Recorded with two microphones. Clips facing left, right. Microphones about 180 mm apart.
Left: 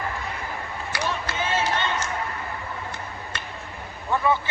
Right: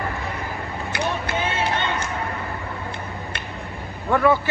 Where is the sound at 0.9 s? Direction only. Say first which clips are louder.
Right 3 dB; 55° right (ahead or behind).